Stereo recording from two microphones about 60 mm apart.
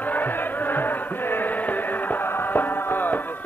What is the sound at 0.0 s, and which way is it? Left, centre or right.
Chant, left.